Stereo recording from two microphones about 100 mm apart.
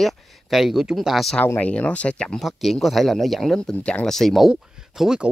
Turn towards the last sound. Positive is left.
turn(degrees=-5)  # may be behind; listen again after turning